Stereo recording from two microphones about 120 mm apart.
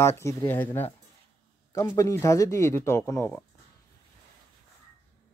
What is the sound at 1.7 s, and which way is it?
Speech, 25° left (ahead or behind).